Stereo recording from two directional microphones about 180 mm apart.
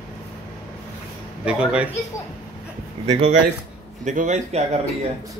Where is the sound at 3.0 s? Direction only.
35° right (ahead or behind).